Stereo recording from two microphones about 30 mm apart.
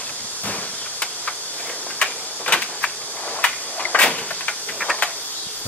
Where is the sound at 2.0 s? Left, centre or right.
Left.